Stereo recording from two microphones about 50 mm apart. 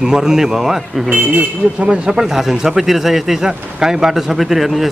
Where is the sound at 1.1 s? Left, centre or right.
Right.